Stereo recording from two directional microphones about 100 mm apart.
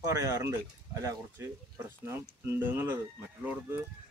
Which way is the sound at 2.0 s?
25° right (ahead or behind).